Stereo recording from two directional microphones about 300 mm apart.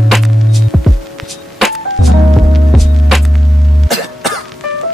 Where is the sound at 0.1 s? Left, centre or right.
Centre.